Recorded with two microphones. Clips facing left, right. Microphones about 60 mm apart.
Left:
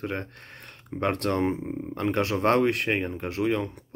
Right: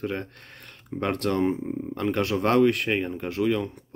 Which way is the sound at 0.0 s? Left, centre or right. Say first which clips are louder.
Right 2 dB; left.